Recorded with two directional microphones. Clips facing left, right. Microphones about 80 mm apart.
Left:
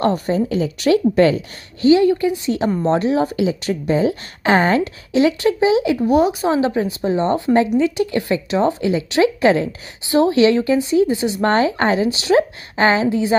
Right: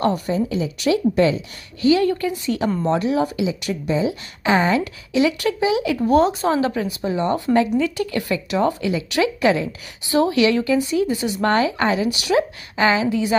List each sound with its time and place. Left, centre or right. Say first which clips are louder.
0.0 s a woman's voice: left 2 dB; left
1.8 s speech: left 4 dB; left
2.0 s speech: left 4 dB; centre
6.0 s speech: right 2 dB; centre